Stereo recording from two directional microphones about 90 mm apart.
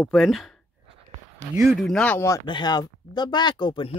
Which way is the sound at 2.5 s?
55° left (ahead or behind).